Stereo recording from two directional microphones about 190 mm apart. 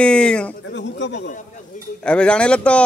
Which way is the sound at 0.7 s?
70° left (ahead or behind).